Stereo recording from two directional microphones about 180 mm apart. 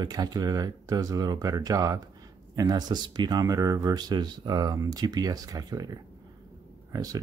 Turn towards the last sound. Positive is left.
turn(degrees=-20)  # may be behind; listen again after turning